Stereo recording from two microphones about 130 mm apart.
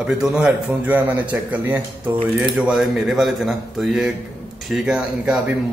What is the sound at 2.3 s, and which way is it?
A man's voice, 5° right (ahead or behind).